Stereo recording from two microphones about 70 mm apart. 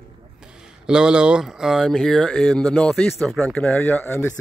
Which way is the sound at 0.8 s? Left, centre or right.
Centre.